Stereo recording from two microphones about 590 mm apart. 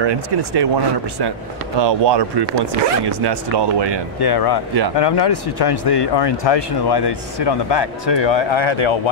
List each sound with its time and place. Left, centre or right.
0.0 s speech: right
1.8 s speech: right
4.2 s speech: left